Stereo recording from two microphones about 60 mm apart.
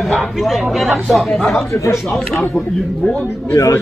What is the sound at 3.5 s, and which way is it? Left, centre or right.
Speech, left.